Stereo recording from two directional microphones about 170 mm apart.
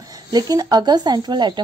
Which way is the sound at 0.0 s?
20° right (ahead or behind).